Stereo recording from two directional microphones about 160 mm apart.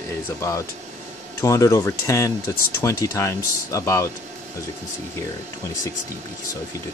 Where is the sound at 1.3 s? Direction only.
20° left (ahead or behind).